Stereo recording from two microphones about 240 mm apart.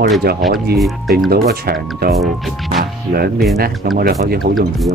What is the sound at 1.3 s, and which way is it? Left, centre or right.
Speech, right.